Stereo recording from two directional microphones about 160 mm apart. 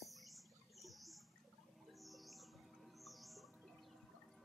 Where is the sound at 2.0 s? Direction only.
Centre (ahead or behind).